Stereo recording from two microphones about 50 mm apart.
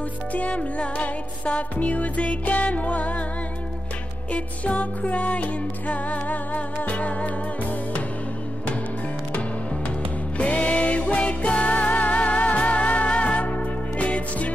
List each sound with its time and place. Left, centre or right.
0.3 s music: left
4.3 s music: left
9.8 s music: left